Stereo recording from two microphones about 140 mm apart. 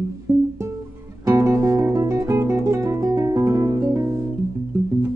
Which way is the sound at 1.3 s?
25° right (ahead or behind).